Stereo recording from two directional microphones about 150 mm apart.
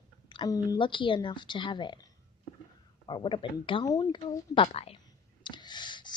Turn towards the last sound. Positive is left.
turn(degrees=30)  # may be behind; listen again after turning